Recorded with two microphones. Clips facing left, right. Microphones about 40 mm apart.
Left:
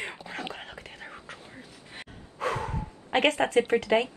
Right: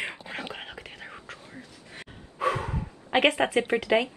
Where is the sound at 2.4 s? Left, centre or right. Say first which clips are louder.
Right 3 dB; centre.